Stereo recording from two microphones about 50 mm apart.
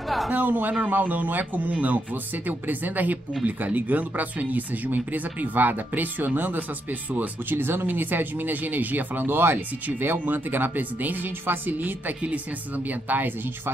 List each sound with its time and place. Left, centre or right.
0.3 s speech: right